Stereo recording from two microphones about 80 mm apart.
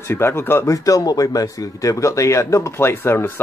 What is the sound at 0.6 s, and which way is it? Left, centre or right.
A man's voice, left.